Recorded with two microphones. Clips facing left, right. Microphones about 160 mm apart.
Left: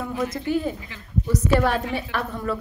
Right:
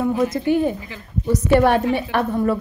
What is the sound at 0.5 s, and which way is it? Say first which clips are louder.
Speech: right 6 dB; 60° right (ahead or behind).